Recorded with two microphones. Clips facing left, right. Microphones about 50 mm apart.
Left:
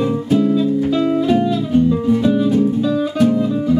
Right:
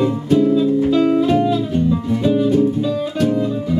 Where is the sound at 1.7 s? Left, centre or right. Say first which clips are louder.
Left 4 dB; centre.